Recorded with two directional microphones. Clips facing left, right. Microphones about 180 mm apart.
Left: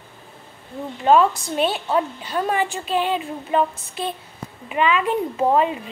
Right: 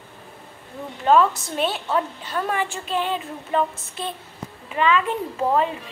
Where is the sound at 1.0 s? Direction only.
15° left (ahead or behind).